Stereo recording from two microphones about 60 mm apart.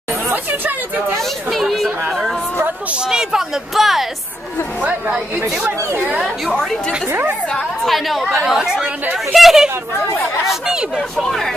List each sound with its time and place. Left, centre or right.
0.3 s chatter: right
1.5 s chatter: centre
3.0 s speech: centre
6.5 s a woman's voice: centre
7.1 s a woman's voice: right
7.8 s speech: centre
11.0 s speech: centre